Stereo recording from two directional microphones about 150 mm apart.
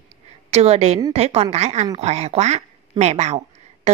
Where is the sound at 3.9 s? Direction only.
45° right (ahead or behind).